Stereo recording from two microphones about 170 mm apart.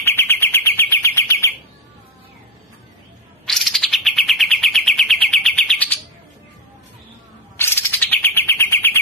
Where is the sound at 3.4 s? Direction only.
Centre (ahead or behind).